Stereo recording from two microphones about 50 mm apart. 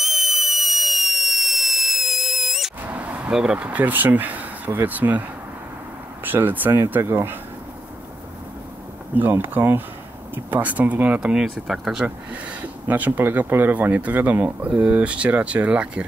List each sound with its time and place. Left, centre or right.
0.0 s fire alarm: centre
2.8 s a sound: right
3.3 s speech: centre
3.6 s speech: right
6.2 s speech: right
9.3 s speech: right
11.1 s speech: centre
12.3 s speech: right